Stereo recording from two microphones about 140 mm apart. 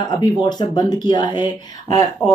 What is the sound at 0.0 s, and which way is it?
A woman's voice, 30° left (ahead or behind).